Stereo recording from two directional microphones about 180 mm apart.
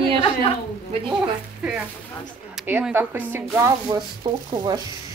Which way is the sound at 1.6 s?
5° right (ahead or behind).